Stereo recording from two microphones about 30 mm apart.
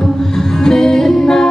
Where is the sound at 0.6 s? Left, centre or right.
Centre.